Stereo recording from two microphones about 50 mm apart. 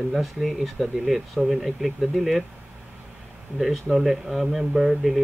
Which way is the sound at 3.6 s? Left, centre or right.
Centre.